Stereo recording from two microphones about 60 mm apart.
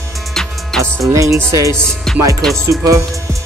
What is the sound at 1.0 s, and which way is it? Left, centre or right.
Speech, right.